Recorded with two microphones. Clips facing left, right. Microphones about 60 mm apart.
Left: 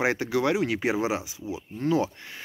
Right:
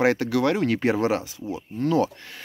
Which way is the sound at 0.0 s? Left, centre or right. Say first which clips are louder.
Right 4 dB; centre.